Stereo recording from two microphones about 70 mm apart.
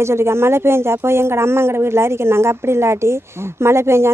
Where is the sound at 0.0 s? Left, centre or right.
Right.